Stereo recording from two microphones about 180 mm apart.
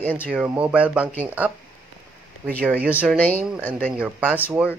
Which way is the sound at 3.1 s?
10° left (ahead or behind).